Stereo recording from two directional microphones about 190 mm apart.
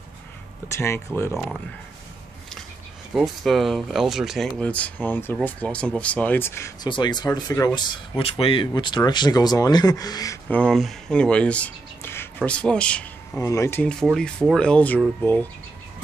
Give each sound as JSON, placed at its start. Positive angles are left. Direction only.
{"t": 0.7, "sound": "speech", "side_deg": 15}
{"t": 1.3, "sound": "speech", "side_deg": 0}
{"t": 3.2, "sound": "speech", "side_deg": 0}
{"t": 8.2, "sound": "speech", "side_deg": 30}
{"t": 10.6, "sound": "speech", "side_deg": 0}